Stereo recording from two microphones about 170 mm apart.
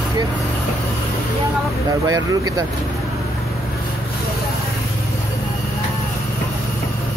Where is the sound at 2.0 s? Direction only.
20° right (ahead or behind).